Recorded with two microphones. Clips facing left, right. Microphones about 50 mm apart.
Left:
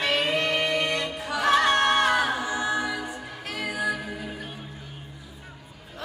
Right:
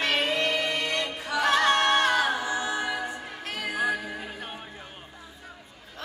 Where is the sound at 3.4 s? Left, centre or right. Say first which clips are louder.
Even; right.